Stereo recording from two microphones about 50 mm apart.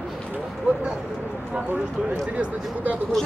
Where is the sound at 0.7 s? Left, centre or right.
Right.